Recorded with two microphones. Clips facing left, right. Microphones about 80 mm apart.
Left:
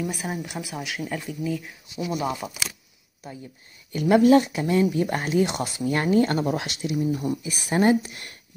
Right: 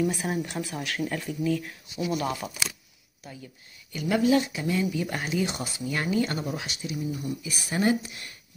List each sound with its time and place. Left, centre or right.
0.0 s speech: centre
3.9 s speech: left
7.1 s speech: left